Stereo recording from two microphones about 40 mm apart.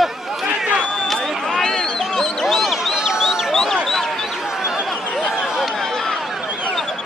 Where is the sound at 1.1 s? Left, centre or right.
Centre.